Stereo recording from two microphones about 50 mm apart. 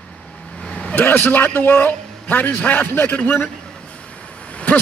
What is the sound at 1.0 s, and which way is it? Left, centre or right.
A man's voice, left.